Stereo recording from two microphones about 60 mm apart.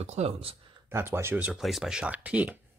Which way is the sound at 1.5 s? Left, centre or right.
Centre.